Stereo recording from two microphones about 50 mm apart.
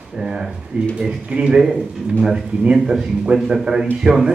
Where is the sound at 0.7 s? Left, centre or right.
Right.